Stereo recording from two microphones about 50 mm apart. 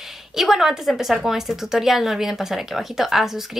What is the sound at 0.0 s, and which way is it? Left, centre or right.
A woman's voice, centre.